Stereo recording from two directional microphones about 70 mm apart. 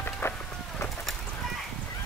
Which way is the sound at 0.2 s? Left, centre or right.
Left.